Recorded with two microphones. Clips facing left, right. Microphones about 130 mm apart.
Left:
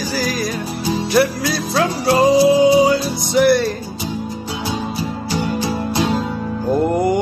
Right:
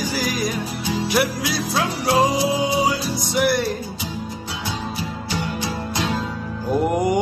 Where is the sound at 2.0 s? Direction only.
Centre (ahead or behind).